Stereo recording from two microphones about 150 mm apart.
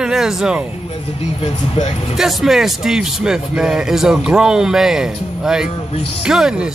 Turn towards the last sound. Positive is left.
turn(degrees=-5)  # may be behind; listen again after turning